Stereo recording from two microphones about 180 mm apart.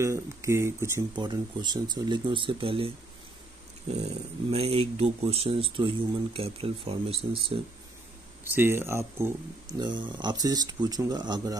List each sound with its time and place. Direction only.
0.0 s speech: 15° right (ahead or behind)
3.9 s speech: 35° right (ahead or behind)
8.5 s speech: 15° right (ahead or behind)